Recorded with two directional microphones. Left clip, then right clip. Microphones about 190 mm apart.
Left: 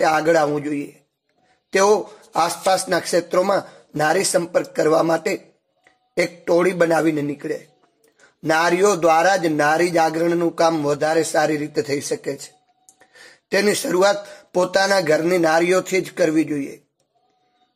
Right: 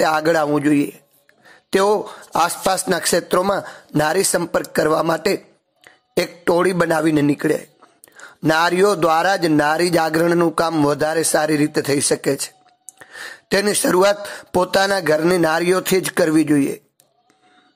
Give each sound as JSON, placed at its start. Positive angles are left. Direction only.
{"t": 0.0, "sound": "speech", "side_deg": -25}